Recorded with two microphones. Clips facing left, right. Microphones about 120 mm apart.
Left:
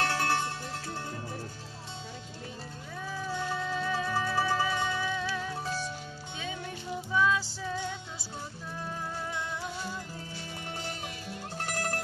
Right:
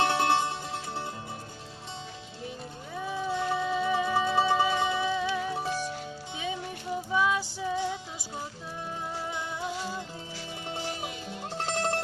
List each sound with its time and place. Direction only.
0.0 s music: 20° right (ahead or behind)
3.0 s music: 20° right (ahead or behind)
3.3 s music: 5° right (ahead or behind)
4.7 s music: 10° right (ahead or behind)
7.1 s music: 15° right (ahead or behind)
11.5 s music: 25° right (ahead or behind)